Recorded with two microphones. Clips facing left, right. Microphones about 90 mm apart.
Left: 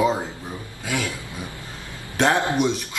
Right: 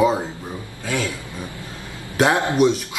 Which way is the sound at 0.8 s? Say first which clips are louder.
Right 2 dB; 20° left (ahead or behind).